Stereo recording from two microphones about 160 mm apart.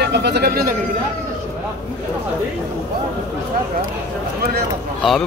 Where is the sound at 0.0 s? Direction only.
90° right; by 0.7 s 75° right (ahead or behind).